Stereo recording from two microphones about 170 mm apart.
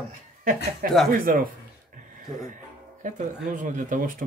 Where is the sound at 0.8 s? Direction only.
55° right (ahead or behind).